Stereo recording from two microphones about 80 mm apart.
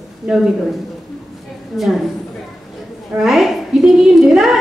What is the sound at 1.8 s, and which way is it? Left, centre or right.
Speech, centre.